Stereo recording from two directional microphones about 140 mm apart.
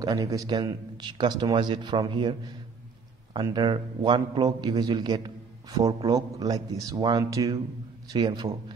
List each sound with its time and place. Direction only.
0.0 s a man's voice: 25° right (ahead or behind)
3.5 s a man's voice: 35° right (ahead or behind)